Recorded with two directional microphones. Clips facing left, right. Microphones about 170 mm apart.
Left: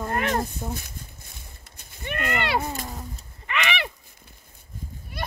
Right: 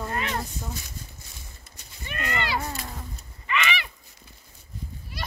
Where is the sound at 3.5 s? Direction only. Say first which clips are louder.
Even; 60° left (ahead or behind).